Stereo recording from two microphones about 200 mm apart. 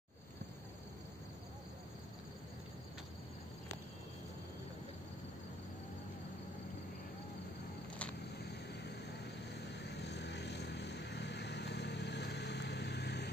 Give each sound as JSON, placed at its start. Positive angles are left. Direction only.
{"t": 8.1, "sound": "vehicle", "side_deg": 55}